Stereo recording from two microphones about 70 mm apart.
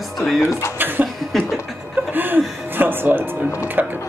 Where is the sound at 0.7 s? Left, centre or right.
Right.